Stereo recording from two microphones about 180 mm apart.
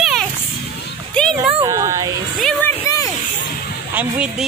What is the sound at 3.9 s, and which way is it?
Speech, 5° right (ahead or behind).